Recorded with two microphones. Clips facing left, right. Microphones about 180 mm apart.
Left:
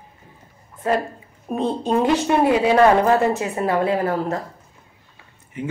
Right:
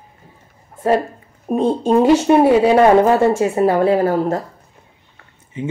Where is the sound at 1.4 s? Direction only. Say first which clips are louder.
Right 6 dB; 35° right (ahead or behind).